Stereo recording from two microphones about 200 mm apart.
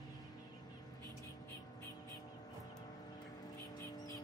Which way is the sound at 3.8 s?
15° left (ahead or behind).